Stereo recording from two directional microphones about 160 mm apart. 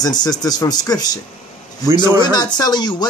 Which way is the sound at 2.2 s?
25° left (ahead or behind).